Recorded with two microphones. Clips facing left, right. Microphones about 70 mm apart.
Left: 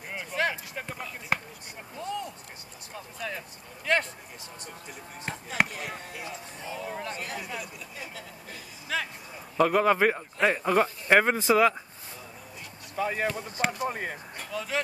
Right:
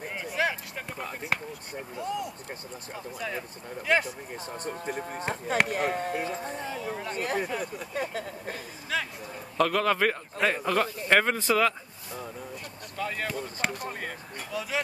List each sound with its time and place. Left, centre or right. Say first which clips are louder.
0.1 s a sound: even; centre
1.3 s basketball bounce: left 1 dB; centre
2.0 s a sound: right 1 dB; centre
3.2 s speech: right 1 dB; centre
4.6 s speech: right 13 dB; right
6.7 s speech: right 1 dB; centre
7.2 s speech: right 6 dB; right
8.9 s speech: right 1 dB; centre
9.6 s a man's voice: left 2 dB; centre
12.9 s a man's voice: left 3 dB; centre
14.5 s speech: even; centre